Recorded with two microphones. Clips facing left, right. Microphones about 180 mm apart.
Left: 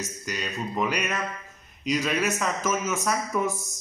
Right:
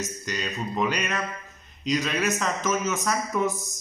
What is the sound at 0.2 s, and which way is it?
A man's voice, 5° left (ahead or behind).